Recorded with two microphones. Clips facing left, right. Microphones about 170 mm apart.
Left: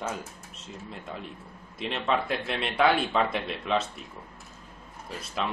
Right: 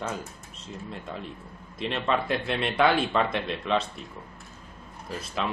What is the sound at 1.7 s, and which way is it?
Speech, centre (ahead or behind).